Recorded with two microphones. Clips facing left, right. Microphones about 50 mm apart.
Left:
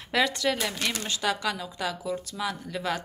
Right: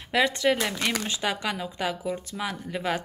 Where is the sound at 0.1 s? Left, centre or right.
Right.